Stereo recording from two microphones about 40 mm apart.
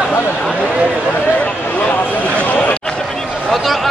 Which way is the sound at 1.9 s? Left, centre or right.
Left.